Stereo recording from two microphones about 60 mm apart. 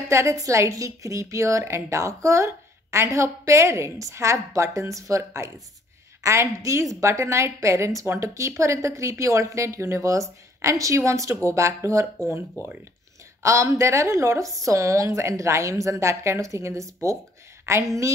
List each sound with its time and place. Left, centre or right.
0.1 s a woman's voice: right